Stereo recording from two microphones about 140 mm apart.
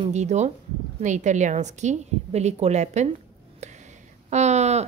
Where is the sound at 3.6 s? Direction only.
55° right (ahead or behind).